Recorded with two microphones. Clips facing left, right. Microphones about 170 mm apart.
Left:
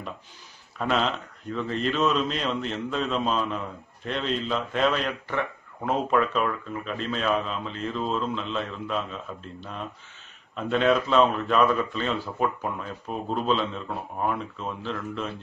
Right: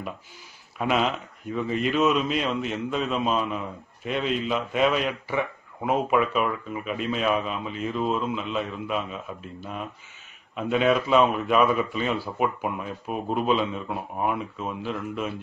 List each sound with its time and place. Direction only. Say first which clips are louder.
0.7 s speech: right 1 dB; 10° right (ahead or behind)